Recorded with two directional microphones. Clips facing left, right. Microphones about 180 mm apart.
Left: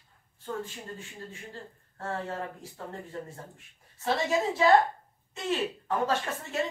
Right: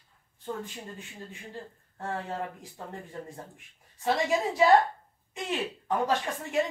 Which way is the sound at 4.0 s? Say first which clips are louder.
Right 1 dB; 15° right (ahead or behind).